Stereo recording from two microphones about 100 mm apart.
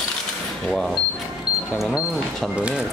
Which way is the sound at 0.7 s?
Centre (ahead or behind).